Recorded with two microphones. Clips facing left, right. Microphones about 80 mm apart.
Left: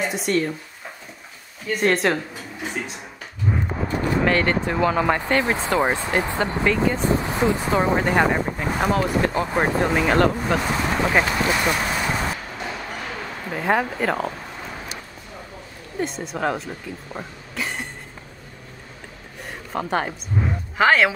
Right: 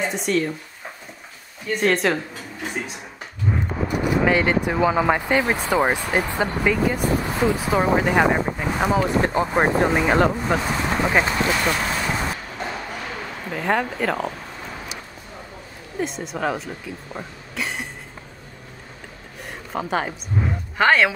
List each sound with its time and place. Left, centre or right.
0.0 s speech: centre
1.7 s speech: centre
3.4 s horse: centre
3.8 s speech: centre
7.0 s speech: left
7.5 s speech: centre
9.1 s speech: right; by 11.1 s centre
11.5 s vehicle: centre
12.6 s a sound: centre
16.0 s speech: centre
19.7 s speech: centre